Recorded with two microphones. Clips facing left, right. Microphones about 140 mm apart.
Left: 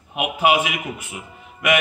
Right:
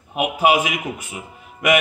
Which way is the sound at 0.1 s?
40° right (ahead or behind).